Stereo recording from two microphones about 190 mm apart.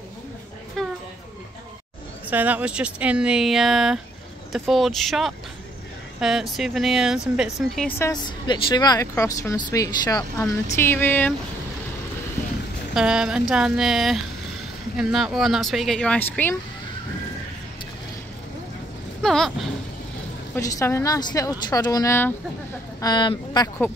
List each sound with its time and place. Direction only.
0.8 s a sound: centre (ahead or behind)
2.2 s speech: 10° right (ahead or behind)
8.0 s speech: 20° left (ahead or behind)
12.9 s speech: 5° right (ahead or behind)
19.2 s speech: centre (ahead or behind)
20.5 s speech: 15° left (ahead or behind)